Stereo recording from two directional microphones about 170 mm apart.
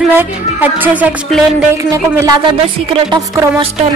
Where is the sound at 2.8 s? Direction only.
35° right (ahead or behind).